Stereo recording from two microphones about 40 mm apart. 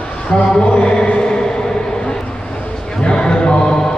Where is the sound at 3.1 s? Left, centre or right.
Left.